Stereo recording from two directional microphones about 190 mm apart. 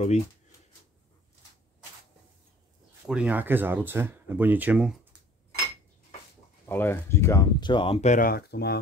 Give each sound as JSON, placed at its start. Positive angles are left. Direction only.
{"t": 3.1, "sound": "speech", "side_deg": -5}
{"t": 6.6, "sound": "speech", "side_deg": 10}